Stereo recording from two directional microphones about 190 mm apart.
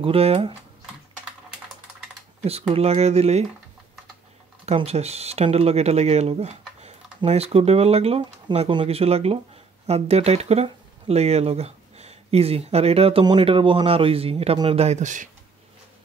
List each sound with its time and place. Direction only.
0.0 s speech: 30° right (ahead or behind)
2.4 s speech: 30° right (ahead or behind)
4.6 s speech: 35° right (ahead or behind)